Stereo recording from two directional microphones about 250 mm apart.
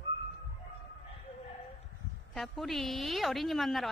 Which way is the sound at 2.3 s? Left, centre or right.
Centre.